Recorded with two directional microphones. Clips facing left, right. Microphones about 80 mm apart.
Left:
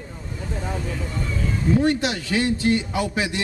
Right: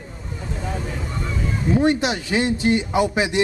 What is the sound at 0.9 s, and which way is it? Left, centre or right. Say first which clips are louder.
Speech: even; right.